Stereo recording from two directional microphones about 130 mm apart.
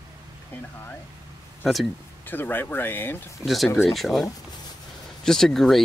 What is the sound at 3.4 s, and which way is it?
Speech, centre (ahead or behind).